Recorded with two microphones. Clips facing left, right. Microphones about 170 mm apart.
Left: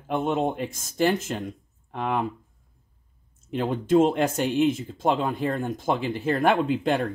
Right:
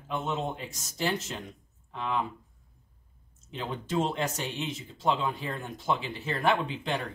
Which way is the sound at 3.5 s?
50° left (ahead or behind).